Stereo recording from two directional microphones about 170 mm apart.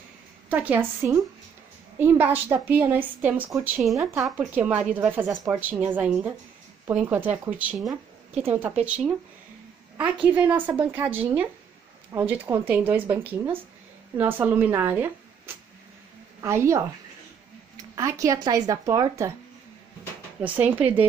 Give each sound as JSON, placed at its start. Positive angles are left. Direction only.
{"t": 0.5, "sound": "speech", "side_deg": -10}
{"t": 10.2, "sound": "a woman's voice", "side_deg": -10}
{"t": 20.4, "sound": "speech", "side_deg": -10}